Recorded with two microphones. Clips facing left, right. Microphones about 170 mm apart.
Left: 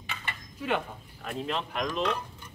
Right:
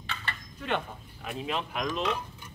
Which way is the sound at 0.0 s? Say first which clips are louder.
Right 1 dB; 15° left (ahead or behind).